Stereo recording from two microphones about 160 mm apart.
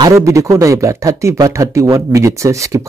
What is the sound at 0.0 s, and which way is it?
Speech, 20° right (ahead or behind).